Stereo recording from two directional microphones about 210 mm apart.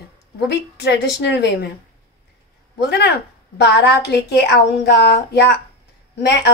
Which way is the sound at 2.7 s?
50° left (ahead or behind).